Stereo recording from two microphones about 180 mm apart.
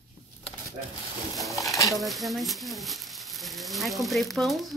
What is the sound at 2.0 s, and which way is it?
Speech, centre (ahead or behind).